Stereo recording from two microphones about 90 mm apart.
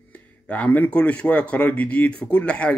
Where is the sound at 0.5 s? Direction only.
20° left (ahead or behind).